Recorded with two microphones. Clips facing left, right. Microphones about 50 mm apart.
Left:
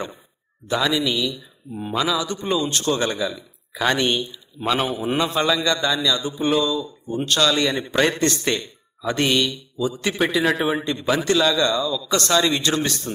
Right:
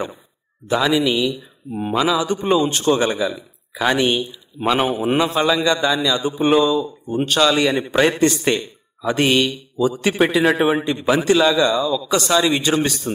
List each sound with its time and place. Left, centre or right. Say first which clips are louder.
0.7 s a man's voice: right 4 dB; centre
2.2 s a man's voice: right 6 dB; right